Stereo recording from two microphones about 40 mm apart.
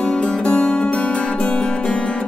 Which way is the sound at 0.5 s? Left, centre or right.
Left.